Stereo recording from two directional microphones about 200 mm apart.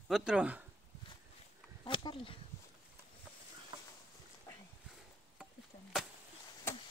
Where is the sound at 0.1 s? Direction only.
5° right (ahead or behind).